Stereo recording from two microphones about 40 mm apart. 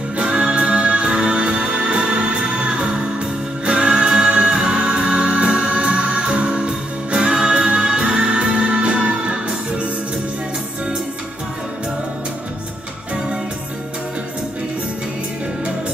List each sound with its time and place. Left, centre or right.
0.2 s music: right